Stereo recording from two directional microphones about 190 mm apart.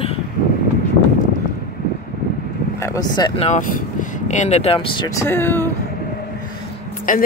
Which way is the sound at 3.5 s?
45° left (ahead or behind).